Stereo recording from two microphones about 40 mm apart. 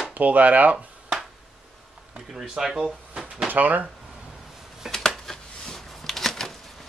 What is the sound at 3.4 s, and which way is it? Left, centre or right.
Speech, right.